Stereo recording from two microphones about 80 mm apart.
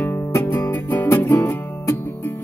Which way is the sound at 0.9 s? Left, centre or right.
Left.